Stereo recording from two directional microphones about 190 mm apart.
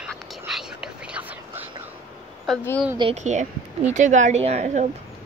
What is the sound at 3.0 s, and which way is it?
A woman's voice, 35° right (ahead or behind).